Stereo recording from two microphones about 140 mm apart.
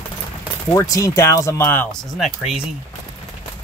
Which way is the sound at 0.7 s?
25° left (ahead or behind).